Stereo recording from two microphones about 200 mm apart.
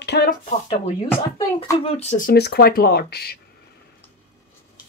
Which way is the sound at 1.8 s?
30° left (ahead or behind).